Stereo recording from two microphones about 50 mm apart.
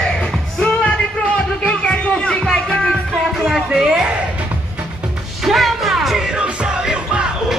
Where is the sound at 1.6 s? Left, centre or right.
Left.